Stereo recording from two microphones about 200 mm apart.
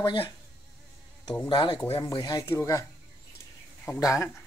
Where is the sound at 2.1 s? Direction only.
20° left (ahead or behind).